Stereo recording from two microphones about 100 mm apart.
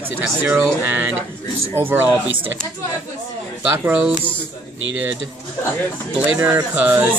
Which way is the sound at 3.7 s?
15° right (ahead or behind).